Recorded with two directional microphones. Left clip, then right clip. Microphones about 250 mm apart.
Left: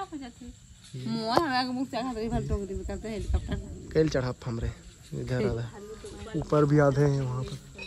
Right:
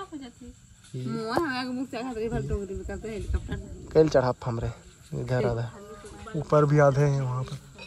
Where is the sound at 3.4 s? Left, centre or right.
Centre.